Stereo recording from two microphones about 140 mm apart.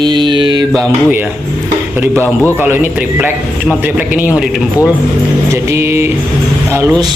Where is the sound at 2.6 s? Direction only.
15° right (ahead or behind).